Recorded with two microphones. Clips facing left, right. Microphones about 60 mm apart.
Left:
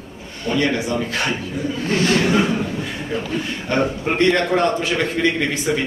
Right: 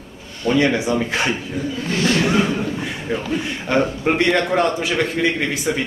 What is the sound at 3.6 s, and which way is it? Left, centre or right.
A man's voice, centre.